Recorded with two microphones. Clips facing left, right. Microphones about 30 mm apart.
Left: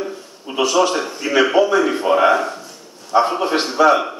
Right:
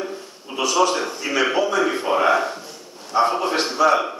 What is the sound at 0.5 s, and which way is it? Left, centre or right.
A man's voice, centre.